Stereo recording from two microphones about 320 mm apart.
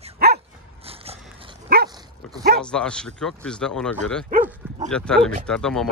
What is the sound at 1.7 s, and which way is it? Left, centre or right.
Dog, right.